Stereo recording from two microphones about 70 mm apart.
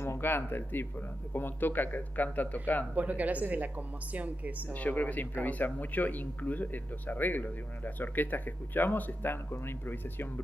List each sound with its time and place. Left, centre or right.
0.0 s speech: left
2.9 s a woman's voice: right
4.7 s speech: left